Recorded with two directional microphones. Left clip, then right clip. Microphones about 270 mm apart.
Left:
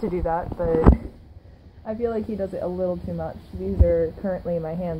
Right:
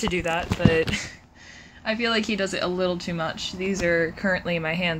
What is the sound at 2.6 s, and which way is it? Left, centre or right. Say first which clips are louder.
Speech: right 1 dB; centre.